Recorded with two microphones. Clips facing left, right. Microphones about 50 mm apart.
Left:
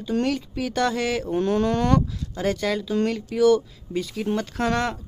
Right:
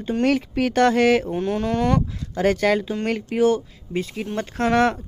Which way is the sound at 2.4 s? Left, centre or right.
Right.